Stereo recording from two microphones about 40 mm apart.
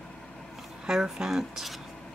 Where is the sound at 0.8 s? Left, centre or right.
Centre.